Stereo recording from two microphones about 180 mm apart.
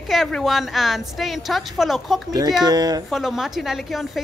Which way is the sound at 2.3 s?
20° right (ahead or behind).